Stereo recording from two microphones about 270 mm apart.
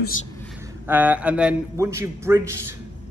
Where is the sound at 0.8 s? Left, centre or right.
Centre.